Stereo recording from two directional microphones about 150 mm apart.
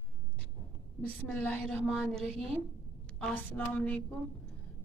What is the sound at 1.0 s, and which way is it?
Speech, 10° left (ahead or behind).